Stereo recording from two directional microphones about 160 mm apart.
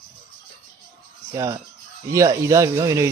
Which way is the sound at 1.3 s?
20° right (ahead or behind).